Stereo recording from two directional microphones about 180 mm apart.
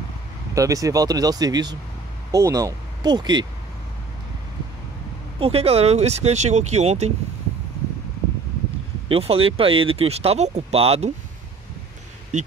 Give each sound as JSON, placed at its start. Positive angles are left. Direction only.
{"t": 0.6, "sound": "speech", "side_deg": -20}
{"t": 5.4, "sound": "speech", "side_deg": -35}
{"t": 9.1, "sound": "speech", "side_deg": -30}
{"t": 12.3, "sound": "speech", "side_deg": -40}